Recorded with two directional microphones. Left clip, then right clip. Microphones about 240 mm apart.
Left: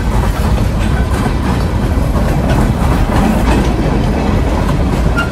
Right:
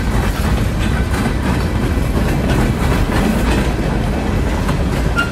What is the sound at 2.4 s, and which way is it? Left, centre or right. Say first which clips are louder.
Train: left 2 dB; left.